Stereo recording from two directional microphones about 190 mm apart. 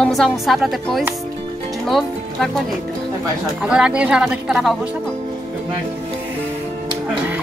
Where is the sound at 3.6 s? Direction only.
5° right (ahead or behind).